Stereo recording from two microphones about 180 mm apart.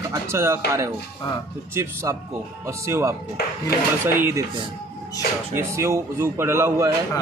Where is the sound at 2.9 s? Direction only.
15° right (ahead or behind).